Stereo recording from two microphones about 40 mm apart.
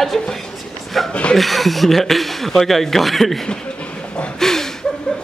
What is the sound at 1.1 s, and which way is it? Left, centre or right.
Speech, left.